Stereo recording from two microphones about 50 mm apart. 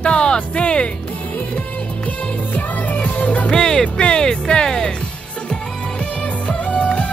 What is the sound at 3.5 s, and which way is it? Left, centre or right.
Music, centre.